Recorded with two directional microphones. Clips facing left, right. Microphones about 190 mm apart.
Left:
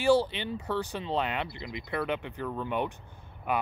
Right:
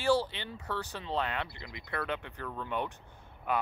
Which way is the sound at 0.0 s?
15° left (ahead or behind).